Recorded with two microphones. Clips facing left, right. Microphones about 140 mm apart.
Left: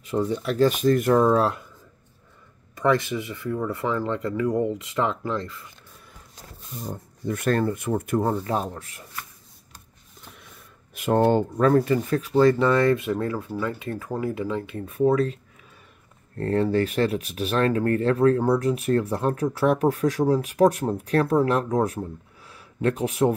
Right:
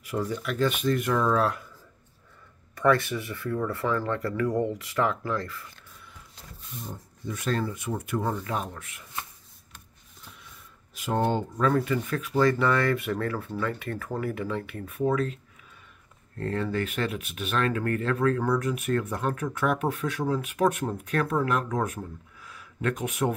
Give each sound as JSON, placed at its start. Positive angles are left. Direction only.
{"t": 0.0, "sound": "speech", "side_deg": 25}
{"t": 2.7, "sound": "speech", "side_deg": 20}
{"t": 6.3, "sound": "speech", "side_deg": 40}
{"t": 7.2, "sound": "speech", "side_deg": 55}
{"t": 11.5, "sound": "speech", "side_deg": 40}
{"t": 16.3, "sound": "speech", "side_deg": 35}